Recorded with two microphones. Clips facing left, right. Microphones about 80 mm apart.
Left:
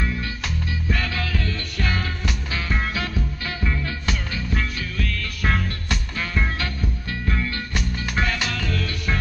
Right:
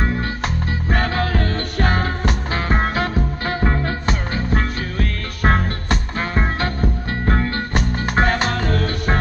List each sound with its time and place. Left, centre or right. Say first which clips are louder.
0.8 s music: right 7 dB; right